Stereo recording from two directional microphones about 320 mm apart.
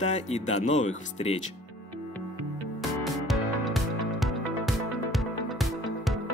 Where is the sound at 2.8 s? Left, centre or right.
Centre.